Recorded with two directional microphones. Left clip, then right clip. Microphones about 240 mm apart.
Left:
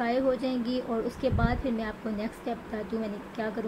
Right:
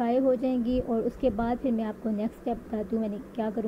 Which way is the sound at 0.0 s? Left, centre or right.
Centre.